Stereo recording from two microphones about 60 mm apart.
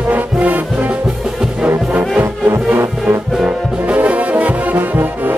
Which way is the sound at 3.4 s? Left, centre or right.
Right.